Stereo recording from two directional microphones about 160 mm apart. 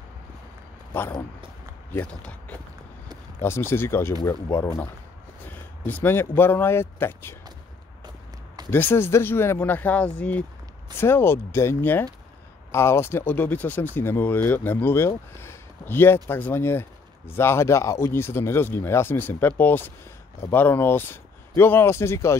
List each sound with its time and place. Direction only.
1.9 s speech: 10° left (ahead or behind)
8.6 s speech: 15° left (ahead or behind)